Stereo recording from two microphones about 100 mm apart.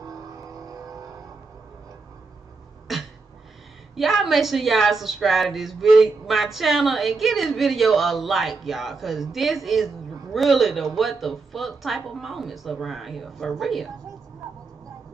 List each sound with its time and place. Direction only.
0.0 s vehicle: 35° right (ahead or behind)
2.9 s a sound: centre (ahead or behind)
3.9 s a woman's voice: centre (ahead or behind)